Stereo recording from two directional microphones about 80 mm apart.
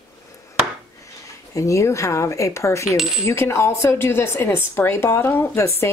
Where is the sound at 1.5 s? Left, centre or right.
Left.